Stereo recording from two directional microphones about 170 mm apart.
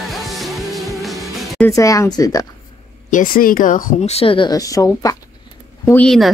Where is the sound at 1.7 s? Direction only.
20° left (ahead or behind).